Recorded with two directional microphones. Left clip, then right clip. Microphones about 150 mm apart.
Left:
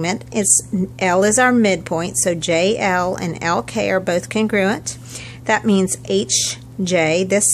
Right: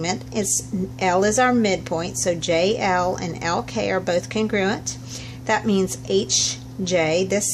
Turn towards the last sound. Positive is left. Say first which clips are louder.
# left 4 dB
turn(degrees=25)  # may be behind; listen again after turning